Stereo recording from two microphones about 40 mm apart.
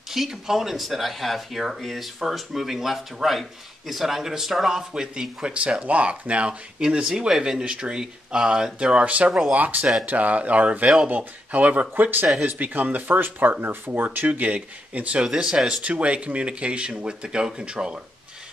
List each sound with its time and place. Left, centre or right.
0.1 s speech: centre
2.1 s a man's voice: centre
5.5 s speech: right
7.0 s a man's voice: centre
9.5 s speech: right
14.0 s speech: right
15.2 s a man's voice: centre
15.8 s speech: right